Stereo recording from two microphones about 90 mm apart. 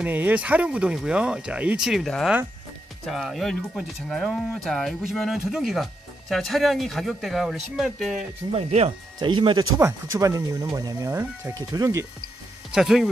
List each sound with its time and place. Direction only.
0.0 s speech: 20° right (ahead or behind)
3.1 s speech: centre (ahead or behind)
8.4 s speech: 45° right (ahead or behind)
9.2 s speech: 65° right (ahead or behind)
10.1 s speech: 40° right (ahead or behind)
11.1 s speech: 20° right (ahead or behind)
11.5 s speech: 40° right (ahead or behind)
12.7 s speech: 5° right (ahead or behind)